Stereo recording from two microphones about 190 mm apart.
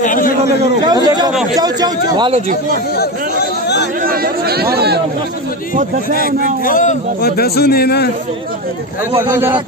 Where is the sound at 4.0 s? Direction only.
50° right (ahead or behind).